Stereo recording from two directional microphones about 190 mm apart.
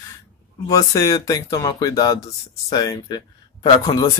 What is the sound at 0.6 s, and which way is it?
Speech, 20° left (ahead or behind).